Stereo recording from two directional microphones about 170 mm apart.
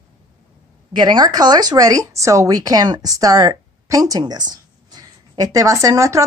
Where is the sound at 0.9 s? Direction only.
25° right (ahead or behind).